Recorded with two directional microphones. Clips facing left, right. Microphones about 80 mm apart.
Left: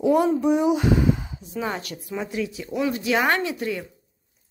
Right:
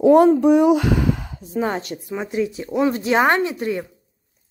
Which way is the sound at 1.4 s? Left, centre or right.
Right.